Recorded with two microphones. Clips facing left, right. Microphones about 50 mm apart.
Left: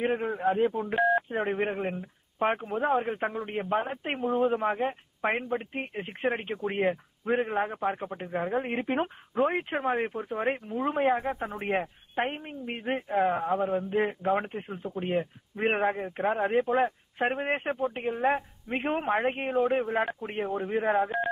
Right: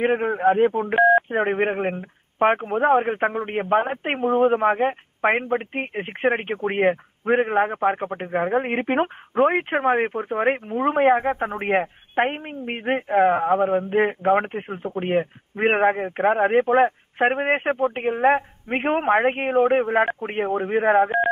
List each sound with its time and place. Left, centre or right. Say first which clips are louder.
0.0 s speech: right 8 dB; right